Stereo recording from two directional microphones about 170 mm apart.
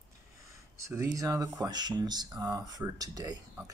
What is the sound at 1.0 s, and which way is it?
Speech, 20° right (ahead or behind).